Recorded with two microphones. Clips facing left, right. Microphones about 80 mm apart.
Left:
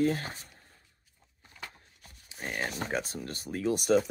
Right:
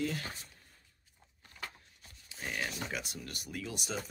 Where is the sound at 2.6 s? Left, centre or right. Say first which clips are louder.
Left 6 dB; left.